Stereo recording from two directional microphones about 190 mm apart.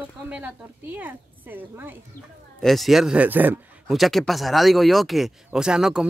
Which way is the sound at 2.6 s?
Centre (ahead or behind).